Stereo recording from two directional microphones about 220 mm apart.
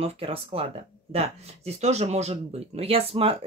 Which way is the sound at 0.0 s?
25° right (ahead or behind).